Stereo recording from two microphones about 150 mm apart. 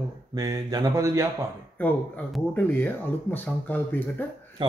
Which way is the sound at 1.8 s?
10° left (ahead or behind).